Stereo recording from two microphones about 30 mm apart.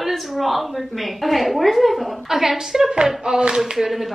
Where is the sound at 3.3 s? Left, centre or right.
Right.